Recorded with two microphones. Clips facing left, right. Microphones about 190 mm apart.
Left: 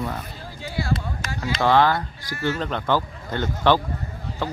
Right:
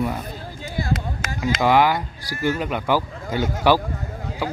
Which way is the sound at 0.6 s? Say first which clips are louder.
Even; 45° right (ahead or behind).